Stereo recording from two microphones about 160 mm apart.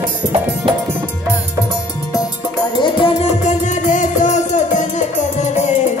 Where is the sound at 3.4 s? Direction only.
50° left (ahead or behind).